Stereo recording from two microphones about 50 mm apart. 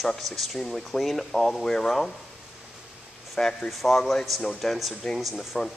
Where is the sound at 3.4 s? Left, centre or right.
Centre.